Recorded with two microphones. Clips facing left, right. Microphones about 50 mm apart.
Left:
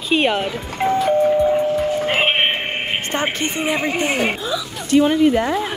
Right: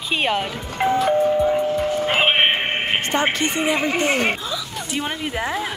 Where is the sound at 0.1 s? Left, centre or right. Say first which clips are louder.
Left 4 dB; centre.